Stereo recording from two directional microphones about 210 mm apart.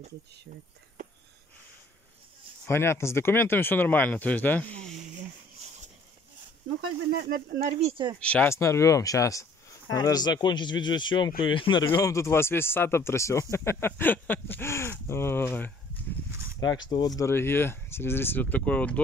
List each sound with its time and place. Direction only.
2.6 s speech: 10° left (ahead or behind)
7.2 s speech: 45° right (ahead or behind)
8.2 s speech: 5° left (ahead or behind)
16.3 s a sound: 10° right (ahead or behind)
16.7 s speech: 20° left (ahead or behind)